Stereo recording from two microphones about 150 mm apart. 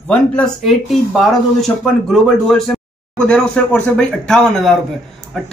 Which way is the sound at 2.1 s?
5° left (ahead or behind).